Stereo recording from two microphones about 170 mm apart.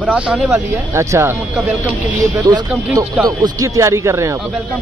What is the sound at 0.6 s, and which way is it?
Speech, 15° right (ahead or behind).